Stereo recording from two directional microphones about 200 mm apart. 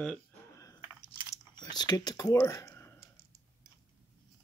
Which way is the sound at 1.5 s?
20° left (ahead or behind).